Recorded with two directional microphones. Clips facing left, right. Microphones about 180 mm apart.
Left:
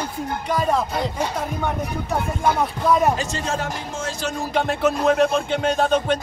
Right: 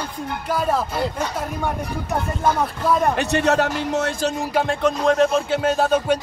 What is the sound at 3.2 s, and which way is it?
Speech, 70° right (ahead or behind).